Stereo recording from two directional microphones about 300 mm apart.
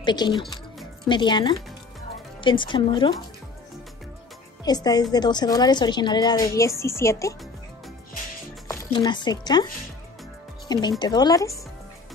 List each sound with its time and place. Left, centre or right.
0.0 s a woman's voice: centre
4.6 s a woman's voice: centre
8.6 s speech: centre
10.7 s a woman's voice: centre